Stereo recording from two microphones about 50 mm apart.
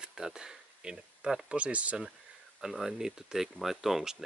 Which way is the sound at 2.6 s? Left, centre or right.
Centre.